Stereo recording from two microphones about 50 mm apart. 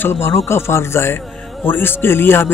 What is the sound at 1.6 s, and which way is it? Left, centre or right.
Speech, left.